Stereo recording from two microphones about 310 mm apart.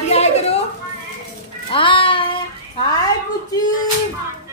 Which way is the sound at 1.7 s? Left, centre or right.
Centre.